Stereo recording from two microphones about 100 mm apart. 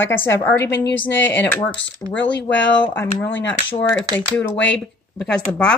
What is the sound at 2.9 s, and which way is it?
Speech, 25° left (ahead or behind).